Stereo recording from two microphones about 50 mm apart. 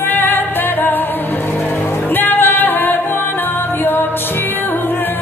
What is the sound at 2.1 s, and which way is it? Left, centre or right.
Music, left.